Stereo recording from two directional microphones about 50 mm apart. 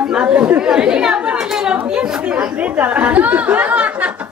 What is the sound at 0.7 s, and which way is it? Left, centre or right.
Chatter, centre.